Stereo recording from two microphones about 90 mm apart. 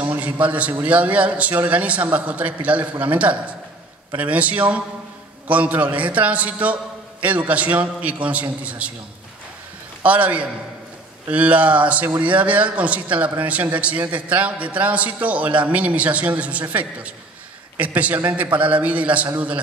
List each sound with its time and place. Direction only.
0.0 s a man's voice: 15° right (ahead or behind)
10.0 s a man's voice: 15° right (ahead or behind)